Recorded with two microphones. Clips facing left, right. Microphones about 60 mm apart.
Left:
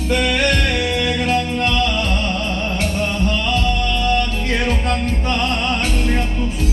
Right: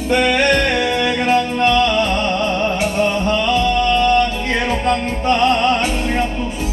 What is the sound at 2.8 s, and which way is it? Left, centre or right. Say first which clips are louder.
Music: right 4 dB; right.